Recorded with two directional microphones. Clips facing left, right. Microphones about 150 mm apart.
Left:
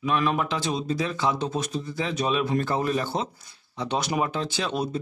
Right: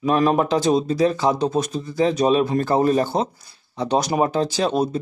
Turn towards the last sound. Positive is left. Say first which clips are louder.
# right 7 dB
turn(degrees=-40)  # may be behind; listen again after turning